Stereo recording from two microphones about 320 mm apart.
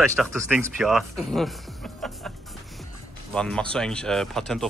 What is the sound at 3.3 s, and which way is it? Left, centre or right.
Speech, centre.